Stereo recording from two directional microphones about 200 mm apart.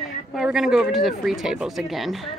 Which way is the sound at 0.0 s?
Centre (ahead or behind).